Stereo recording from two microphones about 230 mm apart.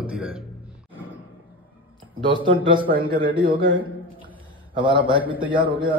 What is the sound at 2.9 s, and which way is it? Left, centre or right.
Speech, right.